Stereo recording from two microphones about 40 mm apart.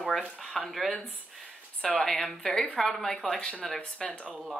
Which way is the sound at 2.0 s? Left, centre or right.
Centre.